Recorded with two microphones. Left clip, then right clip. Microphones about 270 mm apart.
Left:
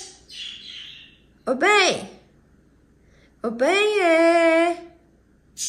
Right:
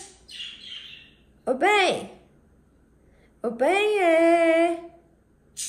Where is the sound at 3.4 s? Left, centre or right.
Centre.